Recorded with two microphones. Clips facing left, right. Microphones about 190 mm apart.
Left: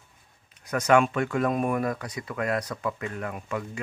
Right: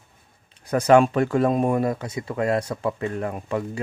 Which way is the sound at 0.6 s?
30° right (ahead or behind).